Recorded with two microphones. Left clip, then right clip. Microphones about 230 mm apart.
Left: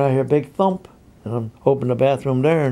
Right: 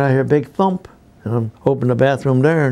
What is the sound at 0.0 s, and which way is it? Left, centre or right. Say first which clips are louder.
Speech: right 2 dB; right.